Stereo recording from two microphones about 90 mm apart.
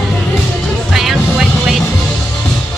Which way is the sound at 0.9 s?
5° right (ahead or behind).